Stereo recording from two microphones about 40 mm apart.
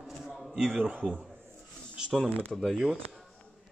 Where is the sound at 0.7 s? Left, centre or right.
Right.